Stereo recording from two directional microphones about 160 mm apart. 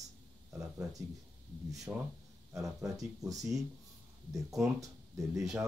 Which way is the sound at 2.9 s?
20° right (ahead or behind).